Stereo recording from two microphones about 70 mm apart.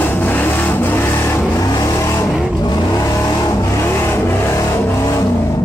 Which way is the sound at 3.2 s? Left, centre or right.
Left.